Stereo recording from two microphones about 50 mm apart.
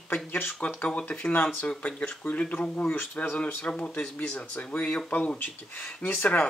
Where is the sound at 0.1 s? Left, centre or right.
Left.